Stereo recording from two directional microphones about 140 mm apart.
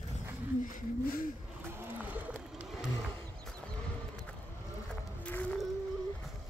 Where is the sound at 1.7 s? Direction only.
10° right (ahead or behind).